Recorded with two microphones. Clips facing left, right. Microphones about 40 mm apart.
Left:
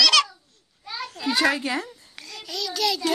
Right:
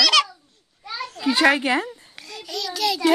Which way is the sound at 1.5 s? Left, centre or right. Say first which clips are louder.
Right 5 dB; right.